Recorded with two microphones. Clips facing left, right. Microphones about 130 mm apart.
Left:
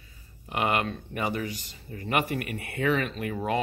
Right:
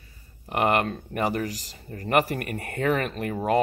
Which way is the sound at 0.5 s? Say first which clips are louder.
Right 4 dB; 45° right (ahead or behind).